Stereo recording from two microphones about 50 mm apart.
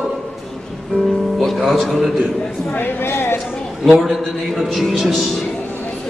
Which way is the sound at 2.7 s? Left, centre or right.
Left.